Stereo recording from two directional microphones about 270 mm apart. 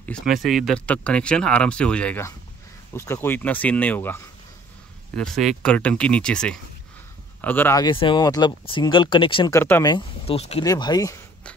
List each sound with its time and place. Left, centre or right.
0.0 s speech: centre